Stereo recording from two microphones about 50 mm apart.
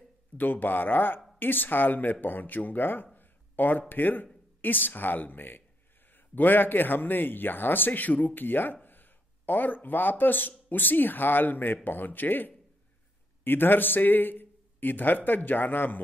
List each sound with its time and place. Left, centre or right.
0.4 s a man's voice: left
3.2 s a sound: left
3.9 s a man's voice: left